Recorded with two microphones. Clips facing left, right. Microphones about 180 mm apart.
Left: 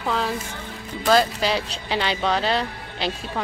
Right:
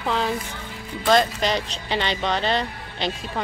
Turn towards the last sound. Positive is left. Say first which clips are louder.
# even
turn(degrees=5)  # may be behind; listen again after turning